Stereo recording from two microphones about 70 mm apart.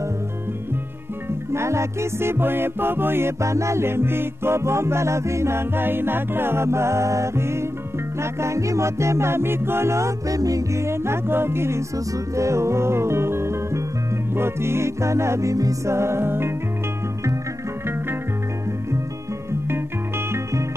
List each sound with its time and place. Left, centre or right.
1.5 s music: right